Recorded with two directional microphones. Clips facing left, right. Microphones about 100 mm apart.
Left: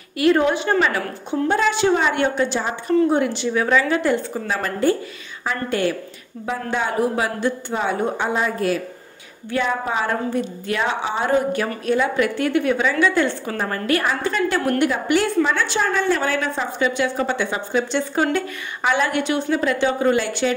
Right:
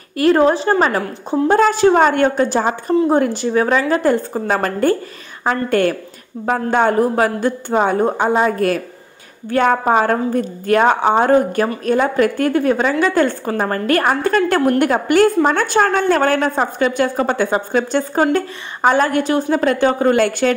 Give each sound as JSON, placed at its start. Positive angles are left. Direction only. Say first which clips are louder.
{"t": 0.2, "sound": "a woman's voice", "louder": "right 4 dB", "side_deg": -35}